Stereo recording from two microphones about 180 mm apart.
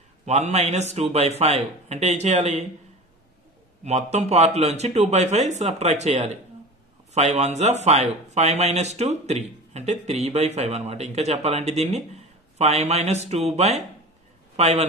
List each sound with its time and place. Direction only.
0.2 s speech: 40° right (ahead or behind)
3.8 s speech: 40° right (ahead or behind)